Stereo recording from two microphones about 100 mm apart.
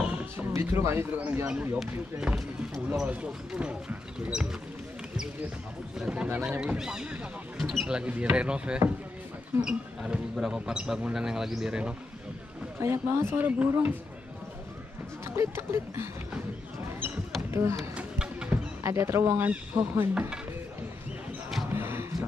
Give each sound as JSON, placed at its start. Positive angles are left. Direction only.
{"t": 0.0, "sound": "a sound", "side_deg": -15}
{"t": 0.6, "sound": "speech", "side_deg": -25}
{"t": 1.8, "sound": "speech", "side_deg": -5}
{"t": 5.9, "sound": "speech", "side_deg": -10}
{"t": 12.8, "sound": "speech", "side_deg": -25}
{"t": 15.3, "sound": "speech", "side_deg": -25}
{"t": 17.5, "sound": "speech", "side_deg": -25}
{"t": 17.9, "sound": "a sound", "side_deg": -10}
{"t": 18.8, "sound": "speech", "side_deg": -25}
{"t": 21.6, "sound": "music", "side_deg": -25}